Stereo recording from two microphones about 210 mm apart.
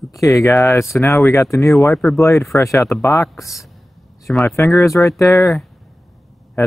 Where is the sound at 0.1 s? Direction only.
15° left (ahead or behind).